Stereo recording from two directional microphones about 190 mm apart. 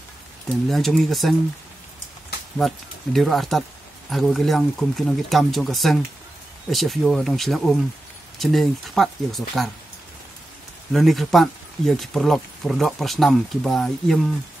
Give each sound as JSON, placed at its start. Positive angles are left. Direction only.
{"t": 0.7, "sound": "speech", "side_deg": 0}
{"t": 2.6, "sound": "speech", "side_deg": 0}
{"t": 10.9, "sound": "speech", "side_deg": 0}